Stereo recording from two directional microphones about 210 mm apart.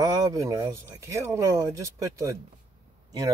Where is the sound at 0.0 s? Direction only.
15° right (ahead or behind).